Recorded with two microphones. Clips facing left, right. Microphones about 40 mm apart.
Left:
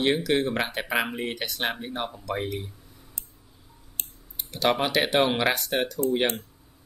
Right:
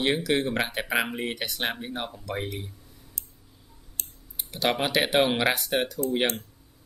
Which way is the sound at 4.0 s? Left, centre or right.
Left.